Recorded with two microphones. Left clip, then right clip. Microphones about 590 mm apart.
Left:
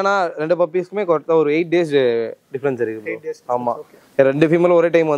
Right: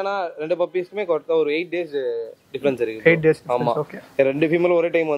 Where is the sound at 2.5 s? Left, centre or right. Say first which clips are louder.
Even; left.